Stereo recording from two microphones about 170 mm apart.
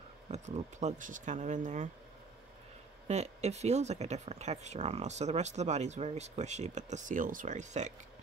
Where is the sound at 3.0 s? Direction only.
40° right (ahead or behind).